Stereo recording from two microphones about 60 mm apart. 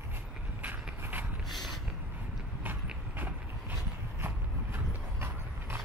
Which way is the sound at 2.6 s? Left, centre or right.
Right.